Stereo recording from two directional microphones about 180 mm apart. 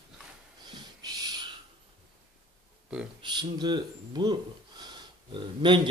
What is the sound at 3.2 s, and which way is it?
Speech, 25° right (ahead or behind).